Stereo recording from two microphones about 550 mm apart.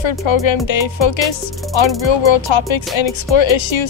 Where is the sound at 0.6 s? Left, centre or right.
Left.